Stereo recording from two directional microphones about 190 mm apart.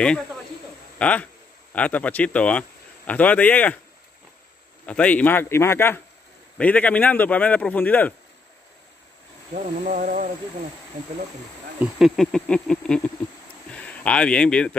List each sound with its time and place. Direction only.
0.9 s a man's voice: 5° left (ahead or behind)
4.8 s a man's voice: 5° left (ahead or behind)
9.8 s speech: 40° right (ahead or behind)
11.8 s insect: centre (ahead or behind)
13.7 s speech: 5° left (ahead or behind)